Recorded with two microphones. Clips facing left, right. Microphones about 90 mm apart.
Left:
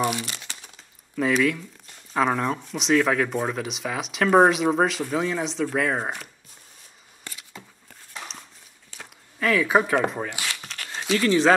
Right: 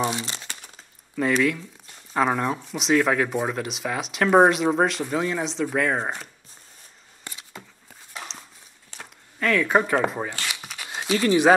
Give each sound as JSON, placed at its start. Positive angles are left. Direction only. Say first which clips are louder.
{"t": 0.0, "sound": "speech", "louder": "left 1 dB", "side_deg": -25}
{"t": 1.1, "sound": "speech", "louder": "even", "side_deg": 0}
{"t": 7.3, "sound": "a sound", "louder": "right 1 dB", "side_deg": -20}
{"t": 9.0, "sound": "speech", "louder": "even", "side_deg": 5}
{"t": 10.5, "sound": "a sound", "louder": "even", "side_deg": -10}
{"t": 11.1, "sound": "speech", "louder": "right 1 dB", "side_deg": -15}